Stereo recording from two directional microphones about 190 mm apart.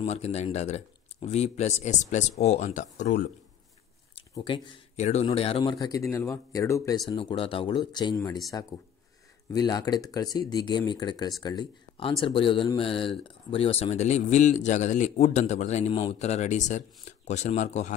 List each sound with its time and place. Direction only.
0.0 s a man's voice: 35° left (ahead or behind)
4.1 s speech: 25° left (ahead or behind)
9.5 s a man's voice: 20° left (ahead or behind); by 17.9 s 40° left (ahead or behind)